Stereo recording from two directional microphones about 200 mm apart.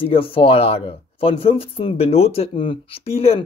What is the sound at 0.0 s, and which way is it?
Speech, 25° left (ahead or behind).